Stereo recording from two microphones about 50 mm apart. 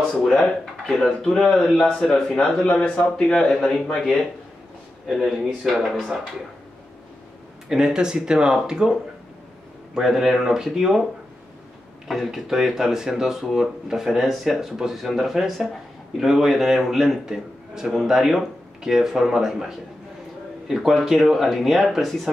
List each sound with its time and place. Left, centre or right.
0.1 s speech: centre
5.0 s speech: centre
7.7 s speech: centre
9.9 s speech: centre
12.1 s speech: centre